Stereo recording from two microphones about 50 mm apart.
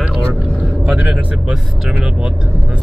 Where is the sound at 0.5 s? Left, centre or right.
Right.